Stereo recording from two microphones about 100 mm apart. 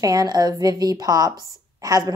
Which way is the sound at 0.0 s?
40° right (ahead or behind).